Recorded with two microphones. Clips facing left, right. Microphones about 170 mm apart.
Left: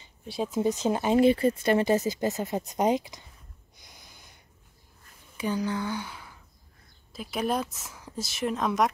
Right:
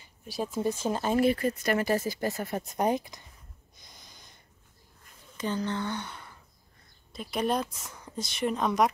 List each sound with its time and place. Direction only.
0.0 s speech: 20° left (ahead or behind)
3.8 s snort: 5° left (ahead or behind)
5.4 s speech: 10° left (ahead or behind)